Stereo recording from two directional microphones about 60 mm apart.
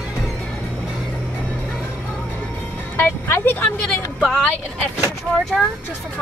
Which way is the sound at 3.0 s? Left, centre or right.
Left.